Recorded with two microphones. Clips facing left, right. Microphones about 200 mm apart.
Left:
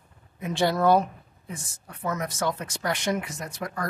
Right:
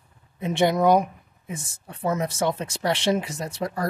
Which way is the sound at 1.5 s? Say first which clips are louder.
Right 4 dB; 25° right (ahead or behind).